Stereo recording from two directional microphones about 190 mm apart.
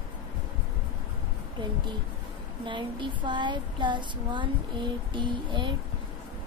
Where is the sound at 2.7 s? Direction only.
25° right (ahead or behind).